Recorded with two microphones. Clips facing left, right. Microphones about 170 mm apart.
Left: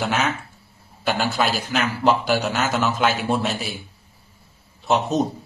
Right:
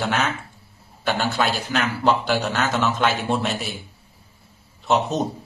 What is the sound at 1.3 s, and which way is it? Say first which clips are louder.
A man's voice: even; centre (ahead or behind).